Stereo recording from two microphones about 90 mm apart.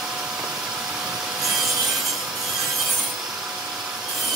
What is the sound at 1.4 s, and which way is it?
Wood, centre (ahead or behind).